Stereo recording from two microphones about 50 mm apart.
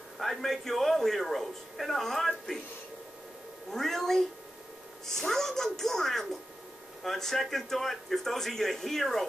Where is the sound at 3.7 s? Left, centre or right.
Centre.